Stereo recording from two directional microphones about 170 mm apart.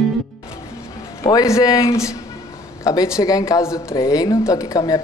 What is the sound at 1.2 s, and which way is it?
A woman's voice, 20° left (ahead or behind).